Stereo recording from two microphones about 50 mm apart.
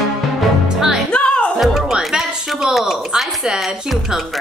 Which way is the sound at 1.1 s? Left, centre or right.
Left.